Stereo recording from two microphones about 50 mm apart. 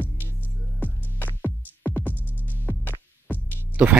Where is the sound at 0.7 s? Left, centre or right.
Left.